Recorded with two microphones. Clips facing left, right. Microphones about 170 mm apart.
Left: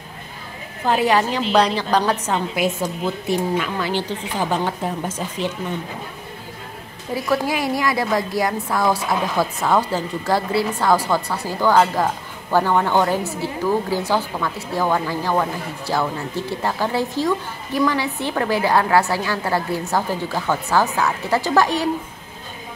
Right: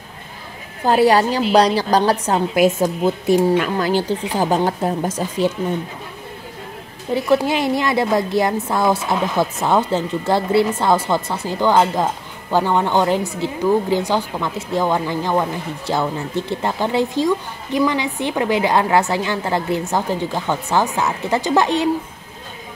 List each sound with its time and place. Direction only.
0.8 s speech: 35° right (ahead or behind)
2.5 s speech: 45° right (ahead or behind)
7.2 s speech: 25° right (ahead or behind)